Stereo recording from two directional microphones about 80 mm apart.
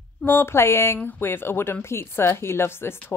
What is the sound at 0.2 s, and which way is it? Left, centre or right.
A woman's voice, left.